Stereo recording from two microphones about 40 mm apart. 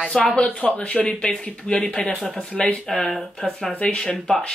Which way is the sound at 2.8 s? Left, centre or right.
Centre.